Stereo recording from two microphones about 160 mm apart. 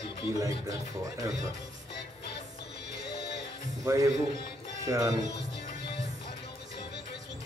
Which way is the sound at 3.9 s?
20° right (ahead or behind).